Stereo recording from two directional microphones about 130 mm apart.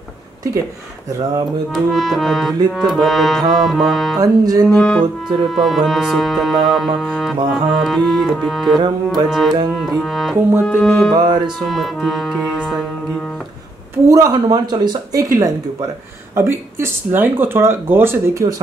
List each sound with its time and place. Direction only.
1.7 s accordion: centre (ahead or behind)
4.2 s speech: 30° right (ahead or behind)
4.7 s accordion: 5° left (ahead or behind)
8.7 s speech: 35° right (ahead or behind)
9.3 s accordion: centre (ahead or behind)
10.6 s music: 5° left (ahead or behind)
11.1 s speech: 35° right (ahead or behind)
11.6 s accordion: centre (ahead or behind)
14.0 s speech: 25° right (ahead or behind)
16.3 s speech: 20° right (ahead or behind)